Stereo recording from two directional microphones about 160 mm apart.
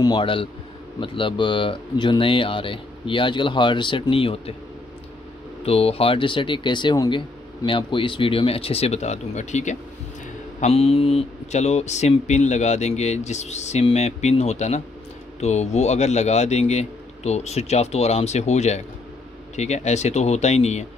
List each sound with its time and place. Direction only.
0.0 s speech: 30° left (ahead or behind)
5.6 s speech: 40° left (ahead or behind)